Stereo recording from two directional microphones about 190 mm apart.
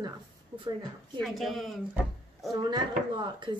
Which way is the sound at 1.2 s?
Centre (ahead or behind).